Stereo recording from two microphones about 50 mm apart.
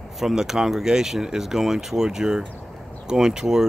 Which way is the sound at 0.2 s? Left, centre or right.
Centre.